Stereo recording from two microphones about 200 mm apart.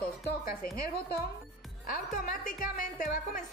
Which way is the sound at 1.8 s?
45° left (ahead or behind).